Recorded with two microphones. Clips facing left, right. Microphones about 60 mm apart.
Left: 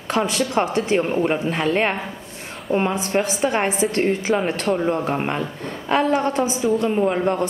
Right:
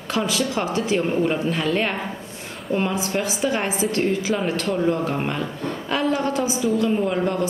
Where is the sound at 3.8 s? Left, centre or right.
Left.